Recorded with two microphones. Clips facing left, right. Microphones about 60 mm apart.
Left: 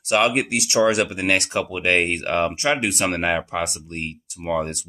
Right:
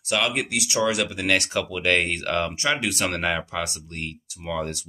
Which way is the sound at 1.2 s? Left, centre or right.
Left.